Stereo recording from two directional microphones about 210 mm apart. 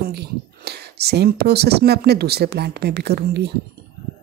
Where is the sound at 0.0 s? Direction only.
50° right (ahead or behind).